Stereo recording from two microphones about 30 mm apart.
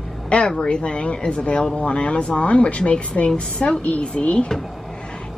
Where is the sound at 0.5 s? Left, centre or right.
Left.